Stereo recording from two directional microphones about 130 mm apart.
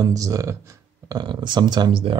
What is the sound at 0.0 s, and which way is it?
Speech, 25° right (ahead or behind).